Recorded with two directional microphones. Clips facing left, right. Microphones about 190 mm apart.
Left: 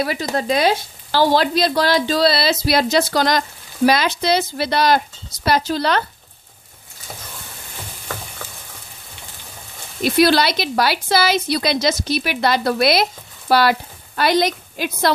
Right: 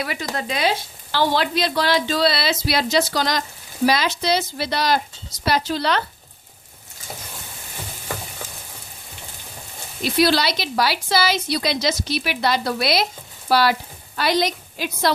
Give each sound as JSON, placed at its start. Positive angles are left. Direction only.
{"t": 0.0, "sound": "a woman's voice", "side_deg": 35}
{"t": 10.0, "sound": "a woman's voice", "side_deg": 55}